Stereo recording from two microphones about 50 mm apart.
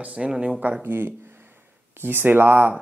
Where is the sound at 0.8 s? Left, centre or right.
Right.